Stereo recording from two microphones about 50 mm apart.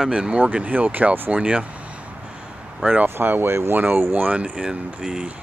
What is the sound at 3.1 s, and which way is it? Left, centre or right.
Speech, right.